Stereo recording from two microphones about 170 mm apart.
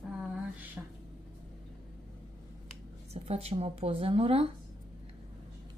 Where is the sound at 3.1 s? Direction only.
40° right (ahead or behind).